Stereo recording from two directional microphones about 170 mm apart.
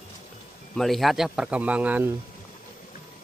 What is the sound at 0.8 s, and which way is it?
Speech, centre (ahead or behind).